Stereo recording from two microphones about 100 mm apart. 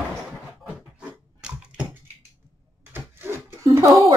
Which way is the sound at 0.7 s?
10° right (ahead or behind).